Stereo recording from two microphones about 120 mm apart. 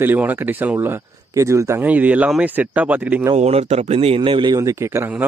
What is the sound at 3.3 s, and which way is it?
Speech, 60° right (ahead or behind).